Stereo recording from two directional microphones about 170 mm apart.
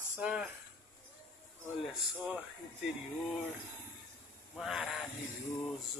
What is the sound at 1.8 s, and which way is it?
Speech, 5° right (ahead or behind).